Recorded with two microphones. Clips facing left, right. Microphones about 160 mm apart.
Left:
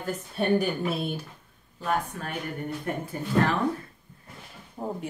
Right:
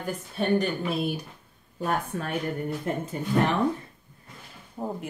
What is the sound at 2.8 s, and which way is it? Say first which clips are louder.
Speech: right 2 dB; 20° right (ahead or behind).